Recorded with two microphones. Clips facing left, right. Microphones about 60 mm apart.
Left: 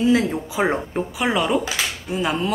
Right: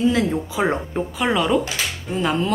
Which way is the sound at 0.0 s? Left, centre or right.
Centre.